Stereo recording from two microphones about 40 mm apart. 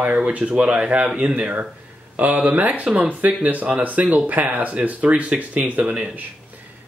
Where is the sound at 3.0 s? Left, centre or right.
Right.